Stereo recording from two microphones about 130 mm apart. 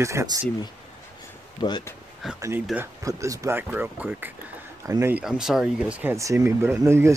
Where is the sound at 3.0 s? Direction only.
25° right (ahead or behind).